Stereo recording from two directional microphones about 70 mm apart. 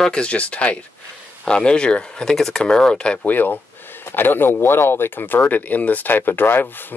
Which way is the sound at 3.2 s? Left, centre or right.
Left.